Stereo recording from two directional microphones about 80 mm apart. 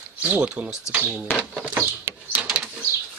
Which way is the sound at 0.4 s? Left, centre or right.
Centre.